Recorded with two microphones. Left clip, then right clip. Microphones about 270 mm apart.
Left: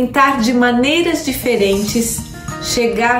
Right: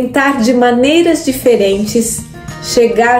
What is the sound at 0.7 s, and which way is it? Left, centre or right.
A woman's voice, centre.